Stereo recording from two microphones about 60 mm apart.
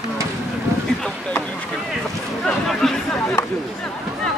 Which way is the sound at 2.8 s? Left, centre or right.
Centre.